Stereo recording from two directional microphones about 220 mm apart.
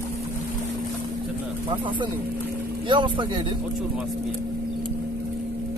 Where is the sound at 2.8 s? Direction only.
20° right (ahead or behind).